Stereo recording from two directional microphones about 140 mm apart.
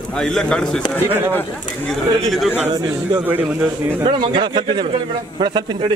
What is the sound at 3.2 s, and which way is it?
Speech, 10° right (ahead or behind).